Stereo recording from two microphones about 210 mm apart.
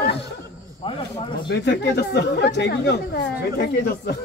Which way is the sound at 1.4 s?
55° left (ahead or behind).